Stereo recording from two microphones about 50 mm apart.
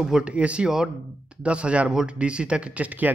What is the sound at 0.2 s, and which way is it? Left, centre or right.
Speech, right.